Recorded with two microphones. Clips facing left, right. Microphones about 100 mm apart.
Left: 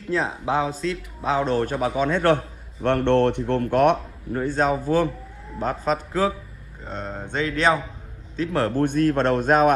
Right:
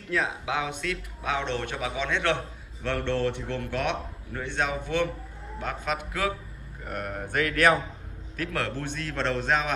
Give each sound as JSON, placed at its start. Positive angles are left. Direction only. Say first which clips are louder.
{"t": 0.1, "sound": "a man's voice", "louder": "left 5 dB", "side_deg": 35}
{"t": 4.3, "sound": "a man's voice", "louder": "left 8 dB", "side_deg": 40}
{"t": 8.4, "sound": "a man's voice", "louder": "left 7 dB", "side_deg": 35}
{"t": 8.7, "sound": "a man's voice", "louder": "left 13 dB", "side_deg": 50}